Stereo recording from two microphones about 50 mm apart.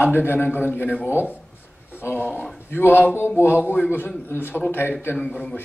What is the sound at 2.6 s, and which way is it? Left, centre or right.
A man's voice, left.